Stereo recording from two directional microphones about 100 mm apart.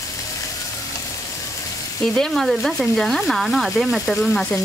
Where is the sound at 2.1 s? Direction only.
5° left (ahead or behind).